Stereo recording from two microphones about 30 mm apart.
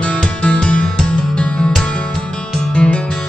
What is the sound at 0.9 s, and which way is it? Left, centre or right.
Music, left.